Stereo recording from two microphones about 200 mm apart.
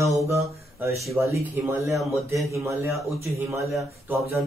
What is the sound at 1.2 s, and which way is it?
Speech, 10° right (ahead or behind).